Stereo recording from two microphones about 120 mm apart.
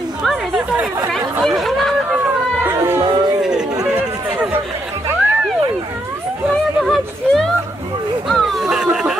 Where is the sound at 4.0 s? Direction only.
10° right (ahead or behind).